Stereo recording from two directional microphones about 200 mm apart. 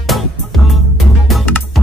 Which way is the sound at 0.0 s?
Centre (ahead or behind).